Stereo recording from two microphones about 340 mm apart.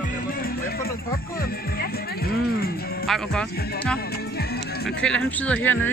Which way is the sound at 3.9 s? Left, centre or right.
Left.